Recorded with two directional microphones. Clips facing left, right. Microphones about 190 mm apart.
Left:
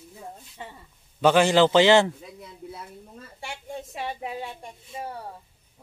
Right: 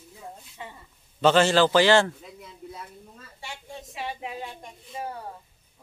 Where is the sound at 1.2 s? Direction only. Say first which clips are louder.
Left 1 dB; 15° left (ahead or behind).